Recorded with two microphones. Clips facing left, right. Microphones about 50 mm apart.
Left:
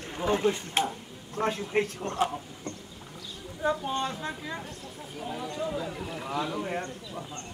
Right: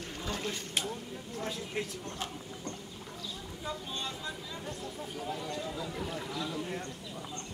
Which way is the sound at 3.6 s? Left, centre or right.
Left.